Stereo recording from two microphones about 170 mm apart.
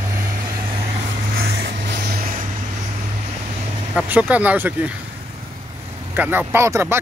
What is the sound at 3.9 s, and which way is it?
Speech, 5° right (ahead or behind).